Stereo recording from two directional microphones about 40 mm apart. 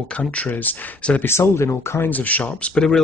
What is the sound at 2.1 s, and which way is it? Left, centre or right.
Speech, left.